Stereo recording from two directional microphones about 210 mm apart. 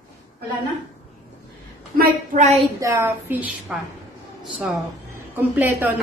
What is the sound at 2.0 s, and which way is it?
Speech, 35° right (ahead or behind).